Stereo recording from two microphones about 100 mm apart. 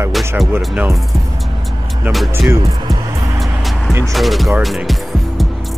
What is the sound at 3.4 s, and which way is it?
Music, centre (ahead or behind).